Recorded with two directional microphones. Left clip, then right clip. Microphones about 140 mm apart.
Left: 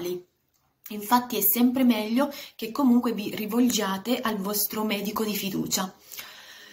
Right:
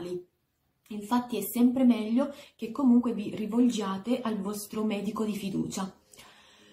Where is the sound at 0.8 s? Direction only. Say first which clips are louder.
Left 7 dB; 5° right (ahead or behind).